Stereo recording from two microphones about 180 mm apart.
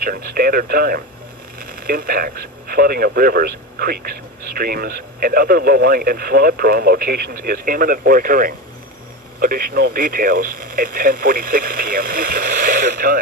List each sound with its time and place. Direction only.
0.0 s speech: 55° right (ahead or behind)